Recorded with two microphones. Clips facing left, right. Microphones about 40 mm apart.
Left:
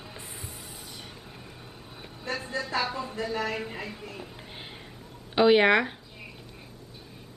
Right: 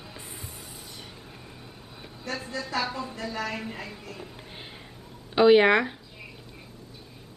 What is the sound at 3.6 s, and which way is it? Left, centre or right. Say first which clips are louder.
Speech: left 1 dB; centre.